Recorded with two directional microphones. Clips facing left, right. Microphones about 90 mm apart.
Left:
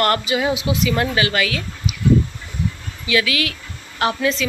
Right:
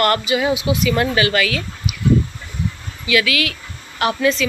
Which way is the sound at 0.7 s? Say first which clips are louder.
Right 2 dB; 25° right (ahead or behind).